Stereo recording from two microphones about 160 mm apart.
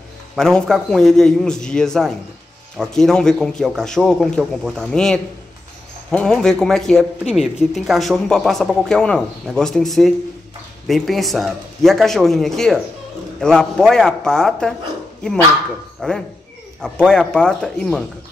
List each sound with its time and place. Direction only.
0.4 s speech: 5° left (ahead or behind)
16.0 s speech: 5° left (ahead or behind)